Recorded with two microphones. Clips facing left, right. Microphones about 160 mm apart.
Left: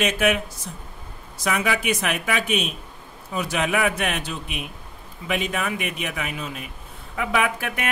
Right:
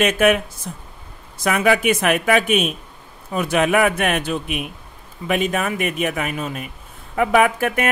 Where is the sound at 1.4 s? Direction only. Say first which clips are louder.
Right 6 dB; 55° right (ahead or behind).